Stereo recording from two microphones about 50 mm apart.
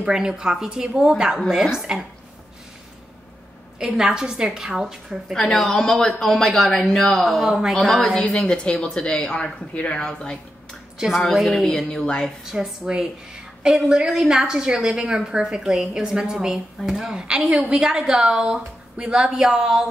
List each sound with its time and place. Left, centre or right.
0.0 s a woman's voice: centre
3.8 s a woman's voice: centre
5.3 s speech: centre
8.0 s a woman's voice: left
11.0 s speech: centre
11.6 s speech: centre
12.4 s a woman's voice: centre
17.5 s a woman's voice: right